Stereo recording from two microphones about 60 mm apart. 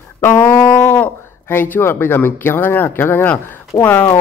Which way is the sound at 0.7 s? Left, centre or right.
Left.